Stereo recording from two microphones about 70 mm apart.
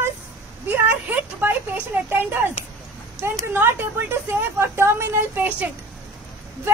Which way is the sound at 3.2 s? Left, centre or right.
Right.